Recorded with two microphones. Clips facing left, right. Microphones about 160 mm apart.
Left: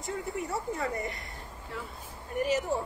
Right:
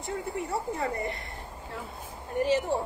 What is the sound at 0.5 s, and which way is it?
Speech, 30° right (ahead or behind).